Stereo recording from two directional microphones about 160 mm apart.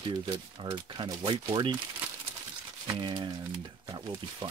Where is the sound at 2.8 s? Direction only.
25° right (ahead or behind).